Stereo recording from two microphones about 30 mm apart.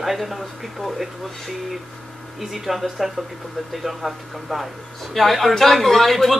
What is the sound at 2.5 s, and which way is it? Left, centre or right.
Speech, centre.